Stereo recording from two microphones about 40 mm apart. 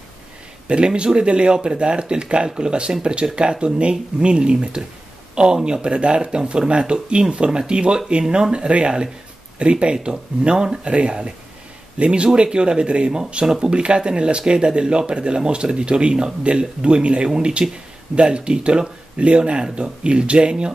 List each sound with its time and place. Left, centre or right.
0.7 s speech: right